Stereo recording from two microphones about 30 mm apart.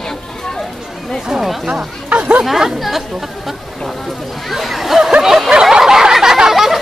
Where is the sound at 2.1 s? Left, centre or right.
Right.